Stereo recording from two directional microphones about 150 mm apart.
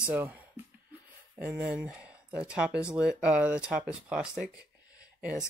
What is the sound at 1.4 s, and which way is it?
Speech, 10° right (ahead or behind).